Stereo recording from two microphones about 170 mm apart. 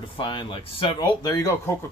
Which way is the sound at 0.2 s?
30° left (ahead or behind).